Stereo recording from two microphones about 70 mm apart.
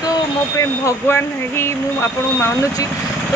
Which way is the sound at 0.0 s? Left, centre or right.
Left.